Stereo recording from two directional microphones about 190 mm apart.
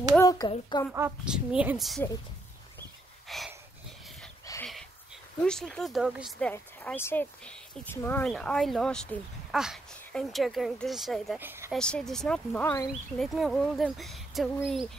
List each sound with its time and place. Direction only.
0.2 s a sound: 20° left (ahead or behind)
0.5 s a child's voice: 25° left (ahead or behind)
0.9 s speech: 10° right (ahead or behind)
3.3 s a sound: centre (ahead or behind)
4.5 s dog: 20° left (ahead or behind)
5.4 s speech: 5° left (ahead or behind)
6.5 s speech: 10° left (ahead or behind)
11.3 s speech: 10° right (ahead or behind)
11.7 s speech: 5° left (ahead or behind)